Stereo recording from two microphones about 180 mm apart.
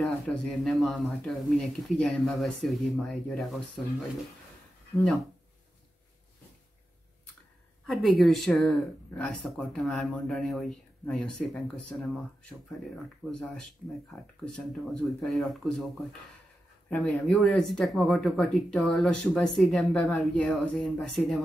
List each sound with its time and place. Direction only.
0.0 s speech: centre (ahead or behind)
7.8 s speech: centre (ahead or behind)
13.3 s speech: 5° left (ahead or behind)